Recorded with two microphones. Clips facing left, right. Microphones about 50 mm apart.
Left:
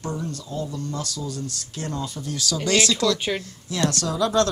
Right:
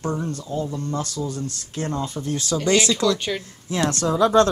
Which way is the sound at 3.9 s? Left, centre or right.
Right.